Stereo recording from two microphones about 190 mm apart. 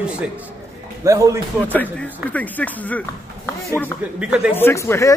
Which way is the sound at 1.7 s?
10° left (ahead or behind).